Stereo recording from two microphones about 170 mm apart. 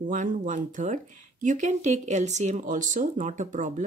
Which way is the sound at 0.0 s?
50° right (ahead or behind).